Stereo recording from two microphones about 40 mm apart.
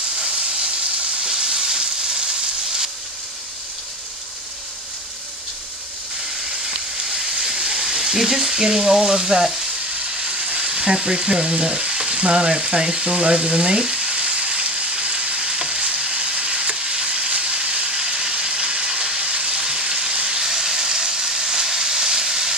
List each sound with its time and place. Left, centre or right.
1.2 s frying: centre
7.1 s a sound: centre
7.5 s speech: centre
10.1 s frying: centre